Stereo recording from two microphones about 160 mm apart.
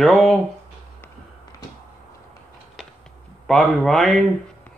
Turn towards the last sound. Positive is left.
turn(degrees=0)  # may be behind; listen again after turning